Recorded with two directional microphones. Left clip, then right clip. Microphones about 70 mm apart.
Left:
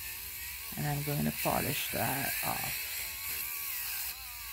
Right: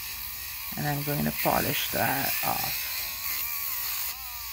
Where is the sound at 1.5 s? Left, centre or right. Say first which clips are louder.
Right 7 dB; centre.